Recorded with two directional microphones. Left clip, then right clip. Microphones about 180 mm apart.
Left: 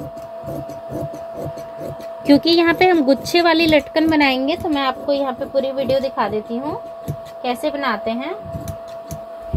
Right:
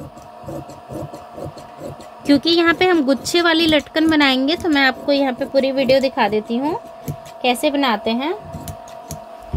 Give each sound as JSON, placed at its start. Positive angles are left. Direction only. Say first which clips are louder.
{"t": 2.2, "sound": "a woman's voice", "louder": "left 1 dB", "side_deg": 0}
{"t": 4.7, "sound": "a woman's voice", "louder": "right 5 dB", "side_deg": -45}